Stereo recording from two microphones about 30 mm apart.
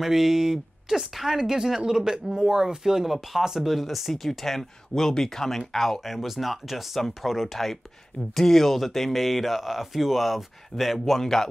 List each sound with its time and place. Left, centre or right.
0.0 s a man's voice: centre
3.1 s speech: centre
5.9 s speech: centre
7.5 s speech: centre